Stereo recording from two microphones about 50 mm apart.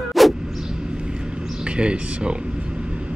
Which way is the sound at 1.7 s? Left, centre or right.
Right.